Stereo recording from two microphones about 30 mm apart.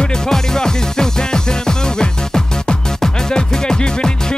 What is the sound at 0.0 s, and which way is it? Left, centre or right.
Music, left.